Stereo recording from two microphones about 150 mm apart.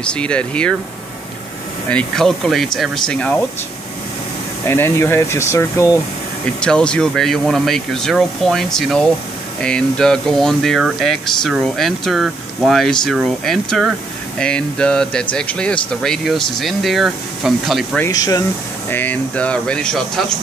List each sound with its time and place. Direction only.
0.0 s speech: 5° left (ahead or behind)
1.9 s speech: 5° left (ahead or behind)
4.6 s speech: 15° left (ahead or behind)
6.4 s speech: 5° left (ahead or behind)
17.9 s speech: 20° left (ahead or behind)
18.9 s speech: 10° left (ahead or behind)